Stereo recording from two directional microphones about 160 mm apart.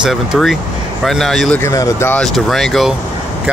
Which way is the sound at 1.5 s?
20° left (ahead or behind).